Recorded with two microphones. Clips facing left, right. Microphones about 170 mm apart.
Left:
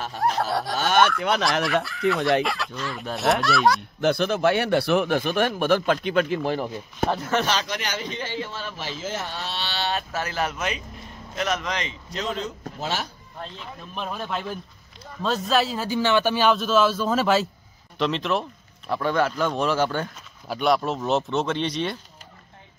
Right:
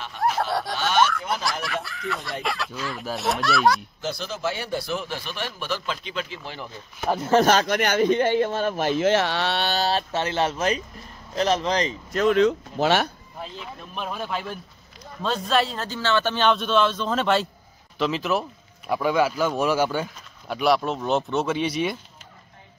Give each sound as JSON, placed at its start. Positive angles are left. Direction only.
{"t": 0.2, "sound": "snicker", "side_deg": 0}
{"t": 0.7, "sound": "a sound", "side_deg": 50}
{"t": 1.6, "sound": "a man's voice", "side_deg": 0}
{"t": 4.0, "sound": "speech", "side_deg": 60}
{"t": 7.4, "sound": "speech", "side_deg": -50}
{"t": 9.7, "sound": "speech", "side_deg": -40}
{"t": 12.1, "sound": "speech", "side_deg": -55}
{"t": 13.4, "sound": "a man's voice", "side_deg": 0}